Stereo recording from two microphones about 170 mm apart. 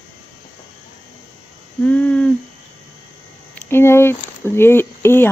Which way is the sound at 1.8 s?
10° left (ahead or behind).